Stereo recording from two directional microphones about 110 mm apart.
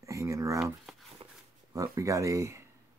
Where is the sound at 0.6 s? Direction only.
Centre (ahead or behind).